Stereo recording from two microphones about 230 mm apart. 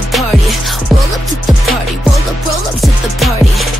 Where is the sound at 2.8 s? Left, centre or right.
Centre.